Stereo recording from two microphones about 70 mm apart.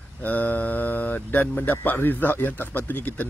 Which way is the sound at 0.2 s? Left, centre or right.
Left.